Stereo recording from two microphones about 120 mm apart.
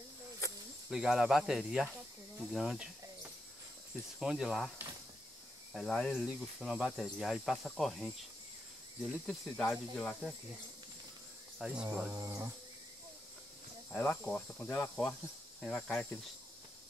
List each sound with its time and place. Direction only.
0.4 s cricket: 25° left (ahead or behind)
0.8 s cricket: 5° right (ahead or behind)
4.2 s cricket: 5° right (ahead or behind)
6.2 s cricket: 5° right (ahead or behind)
11.5 s speech: 5° right (ahead or behind)
12.1 s a sound: 25° right (ahead or behind)
13.9 s cricket: 10° left (ahead or behind)